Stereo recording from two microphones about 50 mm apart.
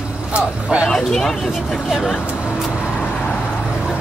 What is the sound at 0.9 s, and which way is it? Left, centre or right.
Speech, centre.